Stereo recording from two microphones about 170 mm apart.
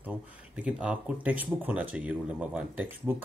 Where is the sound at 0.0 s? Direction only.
10° right (ahead or behind).